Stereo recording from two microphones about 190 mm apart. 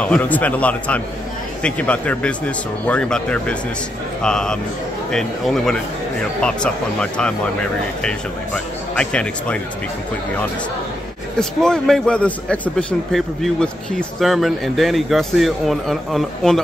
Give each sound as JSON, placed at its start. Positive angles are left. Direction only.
{"t": 0.0, "sound": "a man's voice", "side_deg": 5}
{"t": 8.9, "sound": "a man's voice", "side_deg": 5}
{"t": 11.3, "sound": "a man's voice", "side_deg": 5}